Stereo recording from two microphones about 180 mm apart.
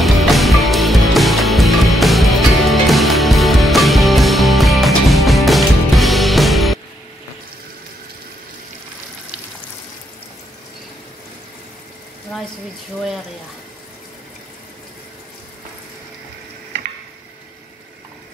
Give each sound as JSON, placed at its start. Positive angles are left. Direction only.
{"t": 0.0, "sound": "music", "side_deg": 0}